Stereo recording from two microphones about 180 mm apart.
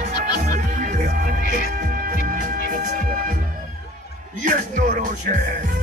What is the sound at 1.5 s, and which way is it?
Music, 55° right (ahead or behind).